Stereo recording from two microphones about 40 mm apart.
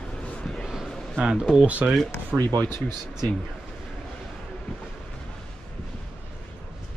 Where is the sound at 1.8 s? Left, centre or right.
Right.